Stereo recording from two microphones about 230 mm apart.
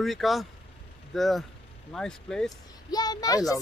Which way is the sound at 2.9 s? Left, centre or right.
Centre.